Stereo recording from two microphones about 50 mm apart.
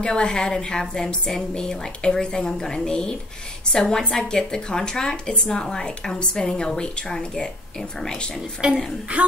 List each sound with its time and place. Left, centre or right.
0.0 s a woman's voice: centre
8.6 s a woman's voice: centre